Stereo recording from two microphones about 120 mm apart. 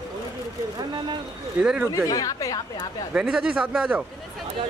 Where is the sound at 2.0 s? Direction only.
30° left (ahead or behind).